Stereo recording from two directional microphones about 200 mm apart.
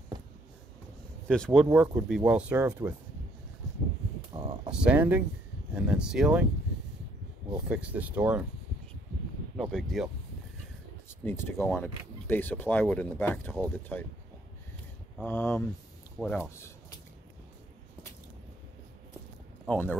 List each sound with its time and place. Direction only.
1.2 s speech: 5° left (ahead or behind)
4.3 s a sound: 25° right (ahead or behind)
4.6 s speech: 5° right (ahead or behind)
7.6 s speech: 5° right (ahead or behind)
9.6 s speech: centre (ahead or behind)
11.1 s speech: 10° left (ahead or behind)
15.2 s speech: 10° left (ahead or behind)